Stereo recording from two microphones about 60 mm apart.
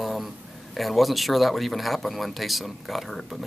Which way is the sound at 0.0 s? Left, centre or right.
Centre.